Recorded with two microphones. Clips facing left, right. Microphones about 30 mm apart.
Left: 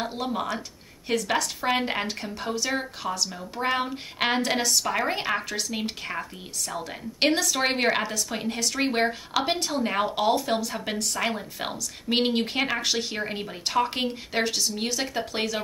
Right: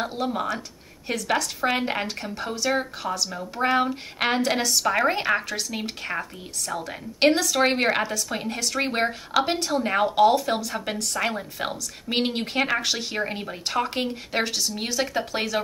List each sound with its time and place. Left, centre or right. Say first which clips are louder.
0.0 s a woman's voice: right 2 dB; centre
3.3 s speech: right 3 dB; centre
3.6 s a woman's voice: right 4 dB; centre